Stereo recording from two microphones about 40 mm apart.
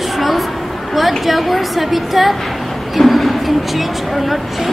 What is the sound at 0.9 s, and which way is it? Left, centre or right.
A woman's voice, centre.